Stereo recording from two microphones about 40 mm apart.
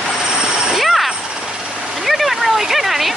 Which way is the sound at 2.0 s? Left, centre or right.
Centre.